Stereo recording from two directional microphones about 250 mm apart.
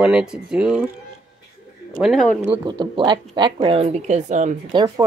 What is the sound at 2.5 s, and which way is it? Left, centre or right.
Speech, centre.